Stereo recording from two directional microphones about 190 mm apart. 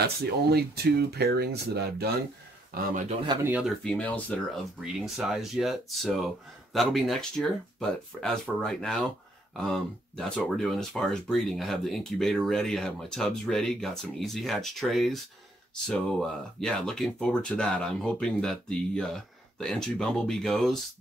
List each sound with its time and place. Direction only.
0.0 s speech: 55° right (ahead or behind)
3.4 s speech: 5° right (ahead or behind)
3.8 s speech: 5° left (ahead or behind)
4.8 s speech: 5° right (ahead or behind)